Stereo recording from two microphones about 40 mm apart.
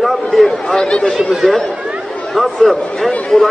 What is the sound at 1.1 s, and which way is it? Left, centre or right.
Speech, centre.